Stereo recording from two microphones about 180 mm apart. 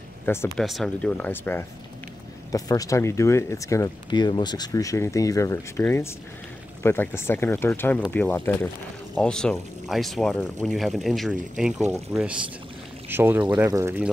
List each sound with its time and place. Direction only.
0.2 s speech: 15° left (ahead or behind)
0.6 s speech: centre (ahead or behind)
13.1 s speech: 10° right (ahead or behind)